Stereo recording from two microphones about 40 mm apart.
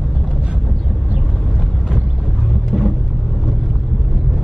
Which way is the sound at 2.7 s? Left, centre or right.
Centre.